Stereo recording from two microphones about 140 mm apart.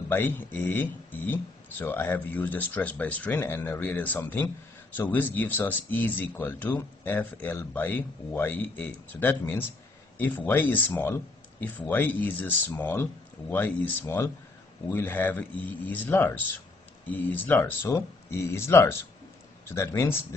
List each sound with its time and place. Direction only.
0.1 s speech: 15° left (ahead or behind)